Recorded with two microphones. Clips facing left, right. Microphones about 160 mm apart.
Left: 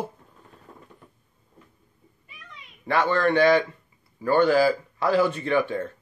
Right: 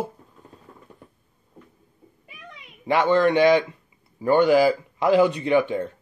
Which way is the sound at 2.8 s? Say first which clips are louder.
Right 4 dB; 15° right (ahead or behind).